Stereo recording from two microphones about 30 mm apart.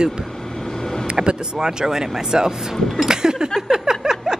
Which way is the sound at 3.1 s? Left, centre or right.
Right.